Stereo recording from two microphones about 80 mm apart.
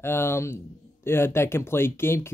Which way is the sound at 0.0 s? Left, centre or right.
Left.